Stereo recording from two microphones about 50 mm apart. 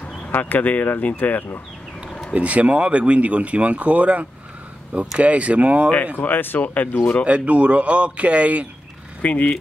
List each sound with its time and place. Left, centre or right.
0.3 s speech: left
2.0 s a sound: centre
2.3 s speech: right
6.1 s speech: left
7.2 s speech: right
9.2 s speech: left